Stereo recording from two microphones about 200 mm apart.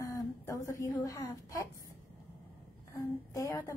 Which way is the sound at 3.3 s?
15° left (ahead or behind).